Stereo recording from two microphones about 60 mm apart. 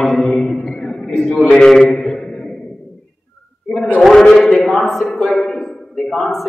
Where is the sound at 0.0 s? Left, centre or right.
Centre.